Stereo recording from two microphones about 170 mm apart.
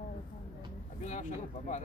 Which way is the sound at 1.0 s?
45° left (ahead or behind).